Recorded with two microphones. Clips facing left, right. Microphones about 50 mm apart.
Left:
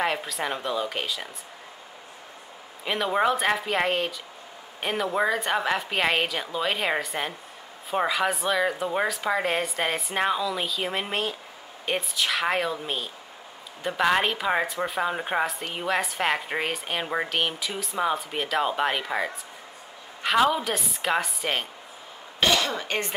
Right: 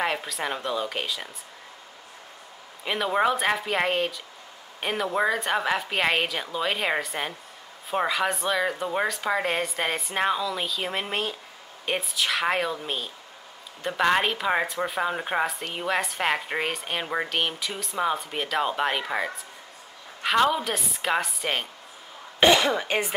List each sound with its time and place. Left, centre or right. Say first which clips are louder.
0.0 s a woman's voice: left 1 dB; centre
2.8 s a woman's voice: even; centre
22.4 s speech: right 4 dB; centre